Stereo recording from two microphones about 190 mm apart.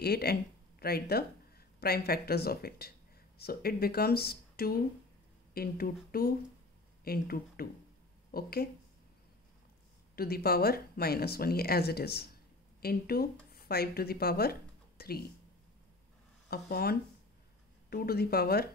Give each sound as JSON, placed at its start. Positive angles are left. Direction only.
{"t": 0.0, "sound": "speech", "side_deg": 55}
{"t": 10.1, "sound": "speech", "side_deg": 55}
{"t": 16.4, "sound": "speech", "side_deg": 55}